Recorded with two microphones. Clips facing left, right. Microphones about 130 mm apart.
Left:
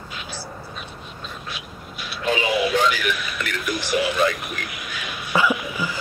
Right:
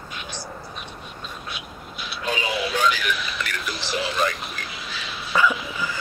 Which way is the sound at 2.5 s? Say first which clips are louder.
Left 3 dB; 10° left (ahead or behind).